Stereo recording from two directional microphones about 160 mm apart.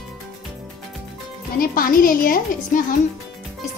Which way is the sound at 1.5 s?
60° left (ahead or behind).